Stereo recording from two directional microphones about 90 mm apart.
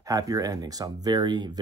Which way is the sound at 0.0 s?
40° right (ahead or behind).